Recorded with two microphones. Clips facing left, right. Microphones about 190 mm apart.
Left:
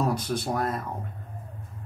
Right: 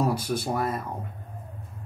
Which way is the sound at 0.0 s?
5° right (ahead or behind).